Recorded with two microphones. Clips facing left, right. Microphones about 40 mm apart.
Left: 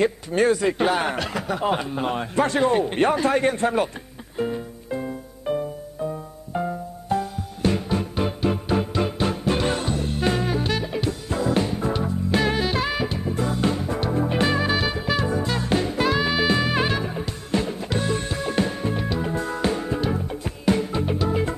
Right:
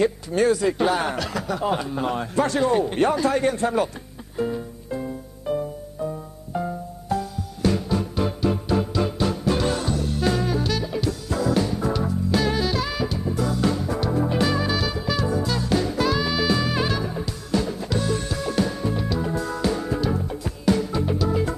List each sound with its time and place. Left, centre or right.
0.0 s speech: left
4.4 s music: left